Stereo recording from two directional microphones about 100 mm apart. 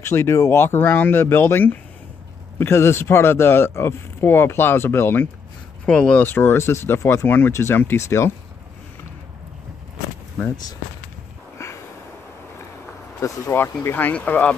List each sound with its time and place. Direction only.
0.0 s speech: 25° left (ahead or behind)
5.9 s speech: 10° left (ahead or behind)
6.2 s speech: 20° left (ahead or behind)
11.5 s a sound: 30° left (ahead or behind)
13.2 s speech: 25° left (ahead or behind)